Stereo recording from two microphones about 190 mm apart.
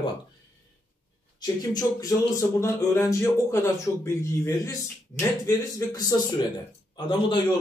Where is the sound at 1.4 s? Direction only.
20° left (ahead or behind).